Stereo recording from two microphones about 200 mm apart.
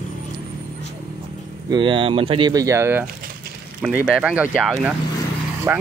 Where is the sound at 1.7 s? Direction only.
25° right (ahead or behind).